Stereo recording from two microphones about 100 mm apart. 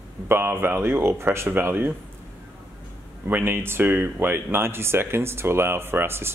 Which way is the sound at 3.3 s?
20° right (ahead or behind).